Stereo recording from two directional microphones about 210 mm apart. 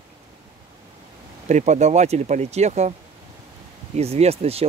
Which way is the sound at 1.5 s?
35° right (ahead or behind).